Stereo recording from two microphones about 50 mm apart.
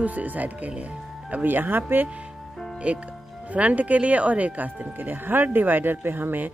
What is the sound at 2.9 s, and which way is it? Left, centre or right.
Speech, right.